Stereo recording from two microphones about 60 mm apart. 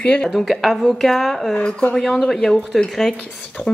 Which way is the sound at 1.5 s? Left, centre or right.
Centre.